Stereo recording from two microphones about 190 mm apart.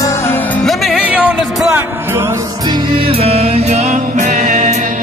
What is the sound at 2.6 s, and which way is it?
Music, 25° right (ahead or behind).